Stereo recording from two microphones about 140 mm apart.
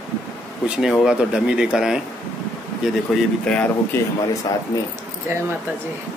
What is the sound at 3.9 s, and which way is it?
Speech, 15° left (ahead or behind).